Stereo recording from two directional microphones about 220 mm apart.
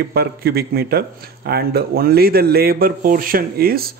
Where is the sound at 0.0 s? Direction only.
45° right (ahead or behind).